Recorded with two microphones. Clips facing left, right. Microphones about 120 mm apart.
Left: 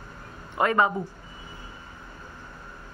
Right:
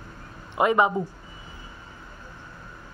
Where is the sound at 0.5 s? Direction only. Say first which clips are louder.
Right 2 dB; 20° right (ahead or behind).